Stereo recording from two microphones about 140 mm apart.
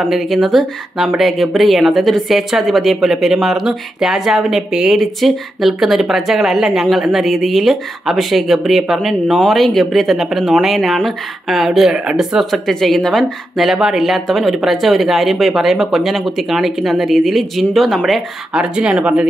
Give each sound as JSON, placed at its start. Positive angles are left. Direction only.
{"t": 0.0, "sound": "speech", "side_deg": 0}